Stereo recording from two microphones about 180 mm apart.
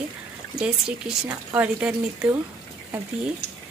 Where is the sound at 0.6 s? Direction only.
5° right (ahead or behind).